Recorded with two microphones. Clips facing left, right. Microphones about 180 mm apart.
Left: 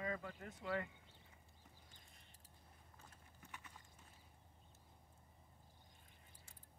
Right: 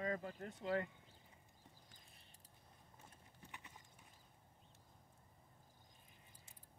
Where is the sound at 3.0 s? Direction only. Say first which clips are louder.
Right 1 dB; 20° right (ahead or behind).